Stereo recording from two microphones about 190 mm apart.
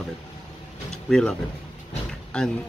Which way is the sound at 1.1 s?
5° left (ahead or behind).